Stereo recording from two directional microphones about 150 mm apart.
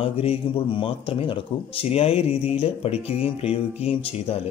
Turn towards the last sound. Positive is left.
turn(degrees=40)  # may be behind; listen again after turning